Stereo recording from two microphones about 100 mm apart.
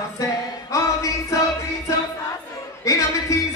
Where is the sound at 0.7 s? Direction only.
30° left (ahead or behind).